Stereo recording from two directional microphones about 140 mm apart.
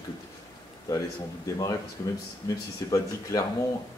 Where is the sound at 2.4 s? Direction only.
25° left (ahead or behind).